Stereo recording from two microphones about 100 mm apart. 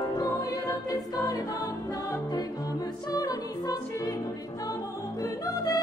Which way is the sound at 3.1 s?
40° left (ahead or behind).